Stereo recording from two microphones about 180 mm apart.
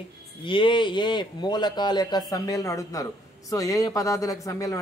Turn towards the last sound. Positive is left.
turn(degrees=20)  # may be behind; listen again after turning